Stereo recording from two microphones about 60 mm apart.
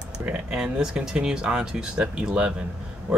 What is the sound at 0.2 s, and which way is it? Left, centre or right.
Speech, centre.